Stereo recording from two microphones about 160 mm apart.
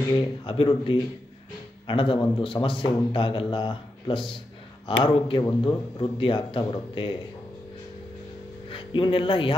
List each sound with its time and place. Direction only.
0.1 s a man's voice: 30° left (ahead or behind)
8.6 s speech: 30° left (ahead or behind)